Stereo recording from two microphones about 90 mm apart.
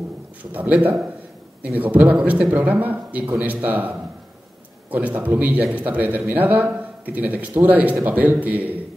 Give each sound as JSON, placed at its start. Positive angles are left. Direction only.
{"t": 0.4, "sound": "speech", "side_deg": -20}
{"t": 4.9, "sound": "speech", "side_deg": -20}